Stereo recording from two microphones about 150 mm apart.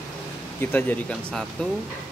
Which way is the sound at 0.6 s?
15° left (ahead or behind).